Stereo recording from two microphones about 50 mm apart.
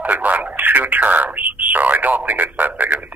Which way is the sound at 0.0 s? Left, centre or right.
Right.